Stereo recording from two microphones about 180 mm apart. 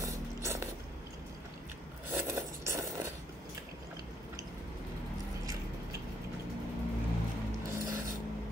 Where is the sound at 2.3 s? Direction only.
15° right (ahead or behind).